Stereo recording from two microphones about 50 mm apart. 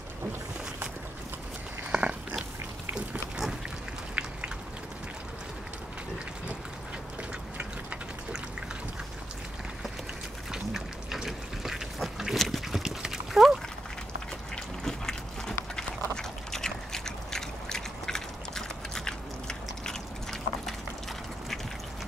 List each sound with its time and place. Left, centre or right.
1.9 s biting: right
4.1 s a sound: right
10.5 s duck: centre
12.4 s dog: centre
14.5 s pig: centre
15.7 s duck: centre